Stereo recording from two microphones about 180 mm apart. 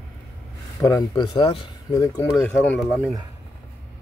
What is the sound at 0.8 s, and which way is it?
Speech, 20° left (ahead or behind).